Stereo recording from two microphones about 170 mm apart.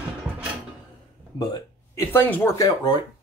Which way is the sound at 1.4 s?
20° left (ahead or behind).